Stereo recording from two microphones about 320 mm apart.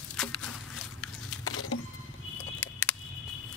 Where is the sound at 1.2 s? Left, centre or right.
Left.